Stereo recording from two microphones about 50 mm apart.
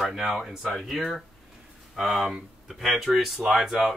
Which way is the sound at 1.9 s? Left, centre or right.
Centre.